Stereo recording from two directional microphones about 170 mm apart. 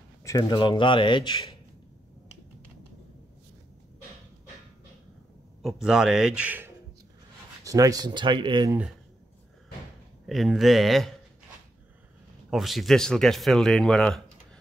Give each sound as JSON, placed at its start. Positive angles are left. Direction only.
{"t": 0.2, "sound": "a man's voice", "side_deg": 20}
{"t": 5.6, "sound": "speech", "side_deg": 0}
{"t": 7.6, "sound": "speech", "side_deg": -20}
{"t": 10.2, "sound": "speech", "side_deg": 0}
{"t": 12.4, "sound": "speech", "side_deg": 0}